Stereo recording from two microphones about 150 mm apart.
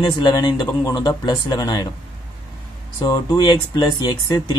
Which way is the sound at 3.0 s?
30° left (ahead or behind).